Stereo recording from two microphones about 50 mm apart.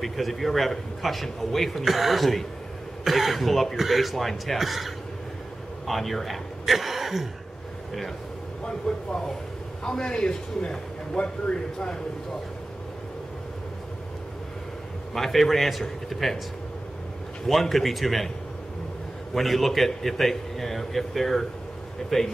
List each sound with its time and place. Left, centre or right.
0.0 s a man's voice: centre
8.6 s a man's voice: centre
15.1 s a man's voice: centre
17.5 s a man's voice: centre
19.3 s a man's voice: centre